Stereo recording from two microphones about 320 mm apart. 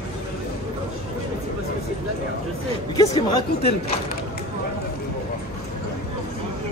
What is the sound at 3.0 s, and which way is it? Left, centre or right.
Speech, centre.